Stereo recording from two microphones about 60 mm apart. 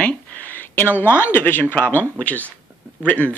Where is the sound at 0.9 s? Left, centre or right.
Left.